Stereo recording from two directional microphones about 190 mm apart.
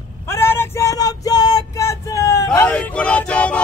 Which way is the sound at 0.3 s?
15° left (ahead or behind).